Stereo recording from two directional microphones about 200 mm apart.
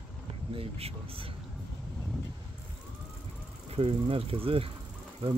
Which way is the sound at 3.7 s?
30° right (ahead or behind).